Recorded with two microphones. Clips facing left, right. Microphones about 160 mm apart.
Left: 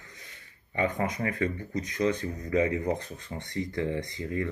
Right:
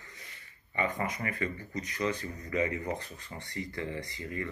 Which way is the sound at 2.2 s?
90° left.